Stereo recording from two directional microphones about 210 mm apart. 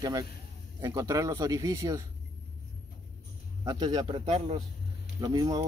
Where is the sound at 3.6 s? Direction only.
20° right (ahead or behind).